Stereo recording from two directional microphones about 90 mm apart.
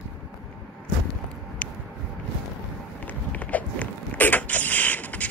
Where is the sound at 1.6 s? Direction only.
15° left (ahead or behind).